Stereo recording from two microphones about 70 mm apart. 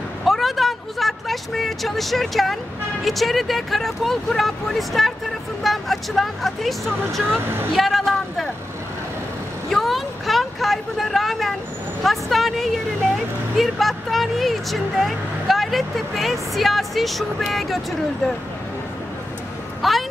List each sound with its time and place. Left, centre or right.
0.2 s vehicle: centre
3.1 s speech: centre
7.3 s speech: right
7.7 s speech: centre
9.7 s speech: centre
19.8 s a sound: centre